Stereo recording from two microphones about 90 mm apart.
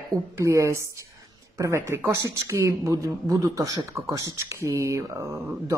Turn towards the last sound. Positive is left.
turn(degrees=-35)  # may be behind; listen again after turning